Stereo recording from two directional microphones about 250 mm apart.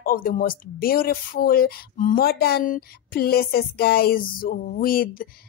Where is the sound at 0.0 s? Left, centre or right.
Left.